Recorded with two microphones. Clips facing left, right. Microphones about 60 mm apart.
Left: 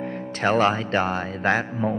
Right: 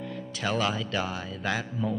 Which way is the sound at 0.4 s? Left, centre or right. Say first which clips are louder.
Left 8 dB; left.